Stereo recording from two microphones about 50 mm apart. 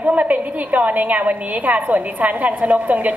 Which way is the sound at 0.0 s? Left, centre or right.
Right.